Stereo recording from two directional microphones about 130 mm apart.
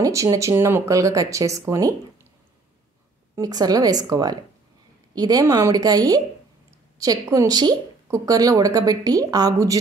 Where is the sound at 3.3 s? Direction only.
30° right (ahead or behind).